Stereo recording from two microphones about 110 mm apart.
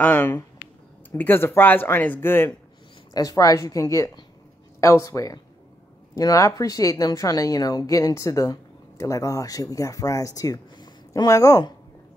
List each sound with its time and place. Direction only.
0.0 s speech: 15° left (ahead or behind)
3.1 s a woman's voice: 35° left (ahead or behind)